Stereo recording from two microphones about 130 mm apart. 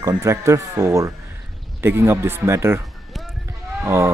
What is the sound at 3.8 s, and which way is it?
Speech, 20° right (ahead or behind).